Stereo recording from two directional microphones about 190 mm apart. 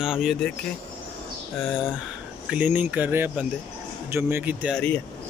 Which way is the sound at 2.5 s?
10° right (ahead or behind).